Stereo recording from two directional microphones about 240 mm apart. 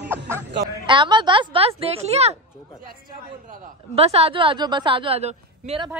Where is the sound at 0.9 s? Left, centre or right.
Centre.